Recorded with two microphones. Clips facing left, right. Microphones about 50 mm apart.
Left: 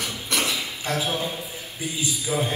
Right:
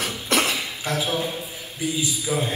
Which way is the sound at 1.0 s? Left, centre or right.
Right.